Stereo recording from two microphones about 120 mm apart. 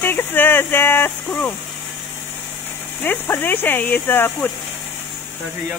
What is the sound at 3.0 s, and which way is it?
Speech, 20° left (ahead or behind).